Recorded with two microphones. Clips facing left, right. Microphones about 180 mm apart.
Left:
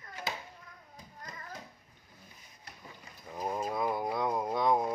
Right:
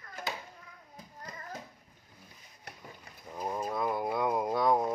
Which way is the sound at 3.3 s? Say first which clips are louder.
Even; 10° left (ahead or behind).